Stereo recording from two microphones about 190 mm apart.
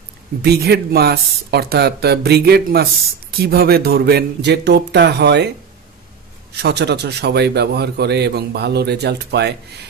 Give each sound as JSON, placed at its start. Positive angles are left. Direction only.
{"t": 0.4, "sound": "speech", "side_deg": -55}
{"t": 6.5, "sound": "speech", "side_deg": -60}